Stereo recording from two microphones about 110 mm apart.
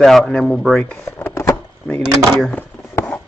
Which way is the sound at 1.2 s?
25° left (ahead or behind).